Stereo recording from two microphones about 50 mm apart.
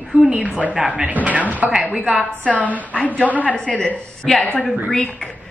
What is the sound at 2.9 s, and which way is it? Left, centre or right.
Speech, left.